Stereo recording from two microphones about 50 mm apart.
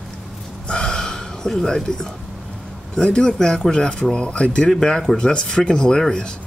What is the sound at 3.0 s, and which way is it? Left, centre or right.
Speech, centre.